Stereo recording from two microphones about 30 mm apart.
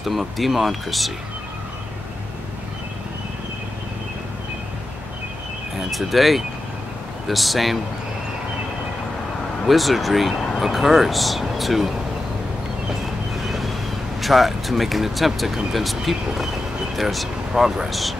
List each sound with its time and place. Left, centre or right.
0.0 s speech: centre
5.9 s speech: centre
9.7 s speech: centre
13.5 s waves: centre
14.2 s speech: centre
17.6 s speech: centre
17.8 s speech: centre